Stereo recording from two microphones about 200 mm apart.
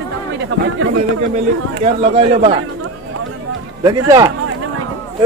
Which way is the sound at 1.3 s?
35° right (ahead or behind).